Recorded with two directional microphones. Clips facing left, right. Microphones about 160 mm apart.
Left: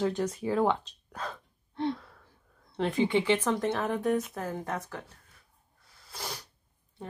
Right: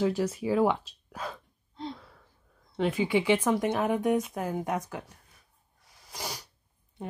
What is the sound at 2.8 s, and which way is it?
A woman's voice, 10° right (ahead or behind).